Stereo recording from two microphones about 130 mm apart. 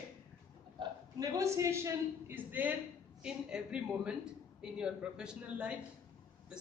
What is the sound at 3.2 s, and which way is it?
A man's voice, 5° right (ahead or behind).